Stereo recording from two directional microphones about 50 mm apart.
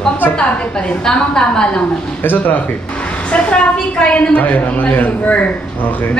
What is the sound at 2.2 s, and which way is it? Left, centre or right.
Speech, left.